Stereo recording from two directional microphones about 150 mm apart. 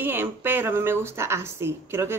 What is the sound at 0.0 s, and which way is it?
A woman's voice, 15° right (ahead or behind).